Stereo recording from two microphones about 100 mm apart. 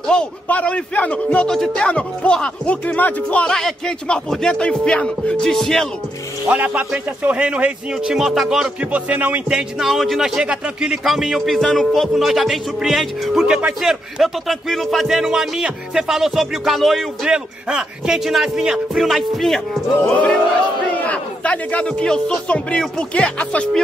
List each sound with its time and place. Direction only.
0.0 s a man's voice: 5° left (ahead or behind)
6.4 s a man's voice: 15° right (ahead or behind); by 19.8 s centre (ahead or behind)
21.0 s a man's voice: 15° left (ahead or behind)